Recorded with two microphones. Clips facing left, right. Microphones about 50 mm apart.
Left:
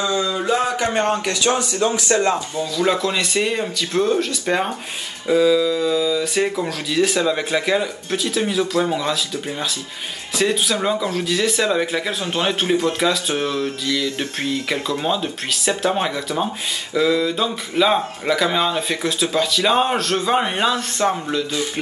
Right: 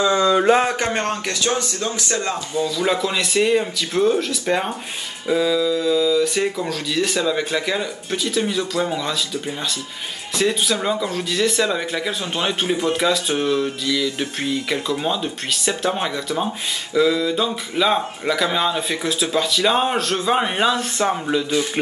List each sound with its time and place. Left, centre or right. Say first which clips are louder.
0.0 s a sound: right 4 dB; right
1.2 s speech: left 2 dB; centre
2.6 s speech: even; centre